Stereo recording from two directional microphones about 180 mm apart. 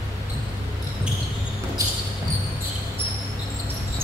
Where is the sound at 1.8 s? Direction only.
15° right (ahead or behind).